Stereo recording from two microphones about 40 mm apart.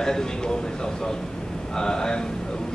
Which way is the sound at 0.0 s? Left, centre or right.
Centre.